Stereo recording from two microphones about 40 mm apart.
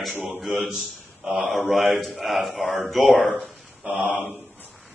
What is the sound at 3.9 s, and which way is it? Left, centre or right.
Speech, right.